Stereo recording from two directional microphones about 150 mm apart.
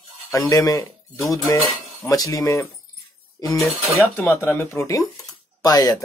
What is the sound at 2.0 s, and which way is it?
Speech, 25° left (ahead or behind).